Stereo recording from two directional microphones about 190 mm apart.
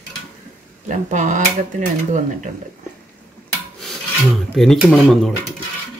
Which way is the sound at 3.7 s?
Centre (ahead or behind).